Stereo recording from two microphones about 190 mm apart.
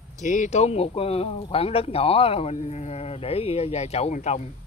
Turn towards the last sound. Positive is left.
turn(degrees=35)  # may be behind; listen again after turning